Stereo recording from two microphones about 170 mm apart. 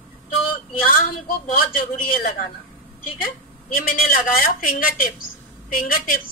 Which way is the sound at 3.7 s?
55° left (ahead or behind).